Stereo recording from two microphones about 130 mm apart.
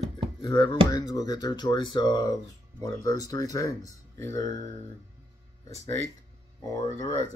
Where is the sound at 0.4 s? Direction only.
35° left (ahead or behind).